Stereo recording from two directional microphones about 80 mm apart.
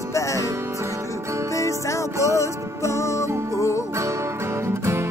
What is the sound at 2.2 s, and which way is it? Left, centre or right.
Music, left.